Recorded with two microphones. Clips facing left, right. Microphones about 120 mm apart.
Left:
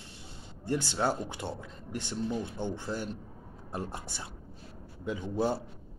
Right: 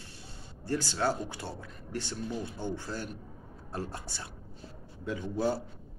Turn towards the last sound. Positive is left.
turn(degrees=20)  # may be behind; listen again after turning